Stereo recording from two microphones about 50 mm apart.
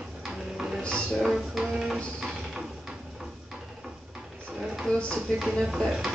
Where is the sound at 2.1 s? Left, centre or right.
Centre.